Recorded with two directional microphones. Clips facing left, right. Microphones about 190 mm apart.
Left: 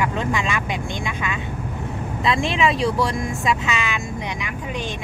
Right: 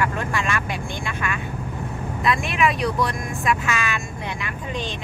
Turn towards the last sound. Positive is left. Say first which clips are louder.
# left 2 dB
turn(degrees=20)  # may be behind; listen again after turning